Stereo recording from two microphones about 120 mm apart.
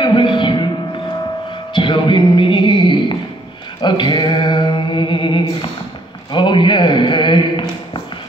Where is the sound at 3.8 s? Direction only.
40° left (ahead or behind).